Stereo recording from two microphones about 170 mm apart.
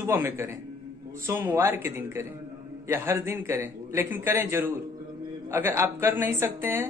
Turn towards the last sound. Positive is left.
turn(degrees=-15)  # may be behind; listen again after turning